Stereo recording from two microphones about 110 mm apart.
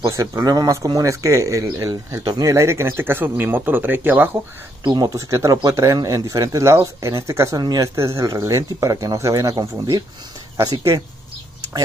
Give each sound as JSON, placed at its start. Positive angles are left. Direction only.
{"t": 0.0, "sound": "speech", "side_deg": -25}
{"t": 2.2, "sound": "speech", "side_deg": -35}
{"t": 4.8, "sound": "speech", "side_deg": -45}
{"t": 5.1, "sound": "speech", "side_deg": -30}
{"t": 7.5, "sound": "speech", "side_deg": -40}
{"t": 7.9, "sound": "speech", "side_deg": -25}